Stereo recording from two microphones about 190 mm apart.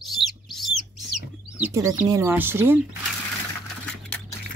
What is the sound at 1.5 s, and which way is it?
Speech, 15° right (ahead or behind).